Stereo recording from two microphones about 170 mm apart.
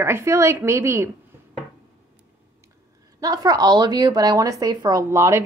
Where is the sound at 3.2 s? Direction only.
20° right (ahead or behind).